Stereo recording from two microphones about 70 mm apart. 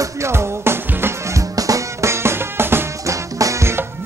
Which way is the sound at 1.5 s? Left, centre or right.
Right.